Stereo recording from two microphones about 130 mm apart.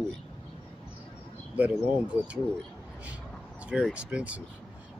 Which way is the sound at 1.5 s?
10° right (ahead or behind).